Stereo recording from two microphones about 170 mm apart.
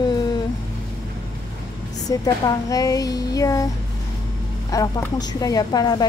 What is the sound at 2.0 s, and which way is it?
A woman's voice, 20° left (ahead or behind).